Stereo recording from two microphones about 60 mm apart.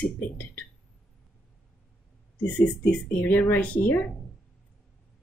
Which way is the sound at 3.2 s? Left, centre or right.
Left.